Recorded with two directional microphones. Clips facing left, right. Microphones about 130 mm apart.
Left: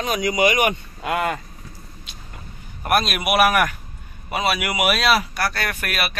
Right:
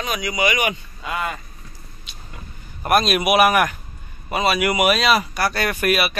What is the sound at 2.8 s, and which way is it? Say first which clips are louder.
Speech: right 3 dB; 5° left (ahead or behind).